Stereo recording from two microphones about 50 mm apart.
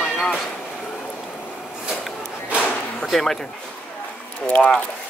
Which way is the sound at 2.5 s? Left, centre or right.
Left.